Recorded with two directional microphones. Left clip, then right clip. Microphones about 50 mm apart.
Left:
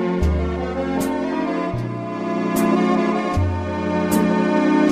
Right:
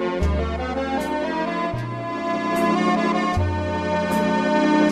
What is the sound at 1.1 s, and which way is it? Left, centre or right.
Music, centre.